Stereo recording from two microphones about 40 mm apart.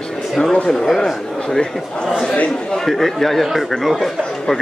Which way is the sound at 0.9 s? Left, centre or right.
Centre.